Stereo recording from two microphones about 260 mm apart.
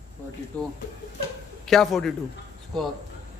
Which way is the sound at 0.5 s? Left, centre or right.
Centre.